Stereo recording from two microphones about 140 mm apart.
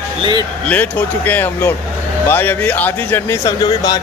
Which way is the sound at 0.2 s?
30° right (ahead or behind).